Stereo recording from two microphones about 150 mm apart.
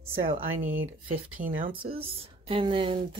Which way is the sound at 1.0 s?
65° right (ahead or behind).